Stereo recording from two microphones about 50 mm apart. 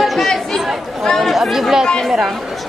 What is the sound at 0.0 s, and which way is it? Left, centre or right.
Chatter, centre.